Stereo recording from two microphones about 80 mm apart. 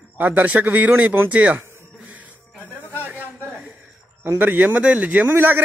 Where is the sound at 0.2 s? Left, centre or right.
Right.